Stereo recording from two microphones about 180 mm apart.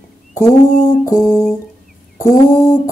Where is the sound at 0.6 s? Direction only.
45° left (ahead or behind).